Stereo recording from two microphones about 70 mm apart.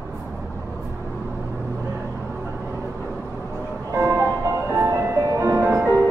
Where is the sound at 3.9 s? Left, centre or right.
Right.